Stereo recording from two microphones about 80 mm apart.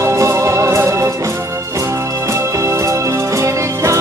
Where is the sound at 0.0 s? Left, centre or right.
Right.